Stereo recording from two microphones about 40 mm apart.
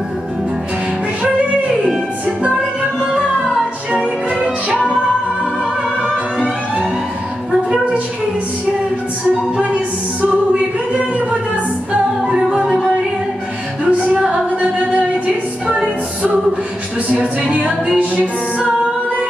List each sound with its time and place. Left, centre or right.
10.2 s a capella: right
12.3 s music: right
13.8 s music: right
17.1 s speech: right